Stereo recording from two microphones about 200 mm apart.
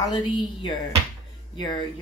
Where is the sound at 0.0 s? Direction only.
20° left (ahead or behind).